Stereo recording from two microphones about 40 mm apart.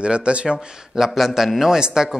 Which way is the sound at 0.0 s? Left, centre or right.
Right.